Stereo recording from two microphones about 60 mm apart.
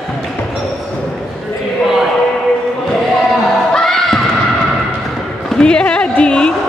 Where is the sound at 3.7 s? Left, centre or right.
Centre.